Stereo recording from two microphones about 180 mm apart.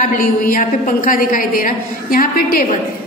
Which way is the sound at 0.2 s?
50° left (ahead or behind).